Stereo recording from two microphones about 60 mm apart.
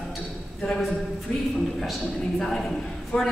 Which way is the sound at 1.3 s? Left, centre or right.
Centre.